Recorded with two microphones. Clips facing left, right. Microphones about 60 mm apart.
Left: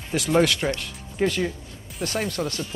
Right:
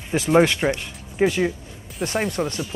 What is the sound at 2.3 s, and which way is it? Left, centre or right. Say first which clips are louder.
Speech: right 3 dB; right.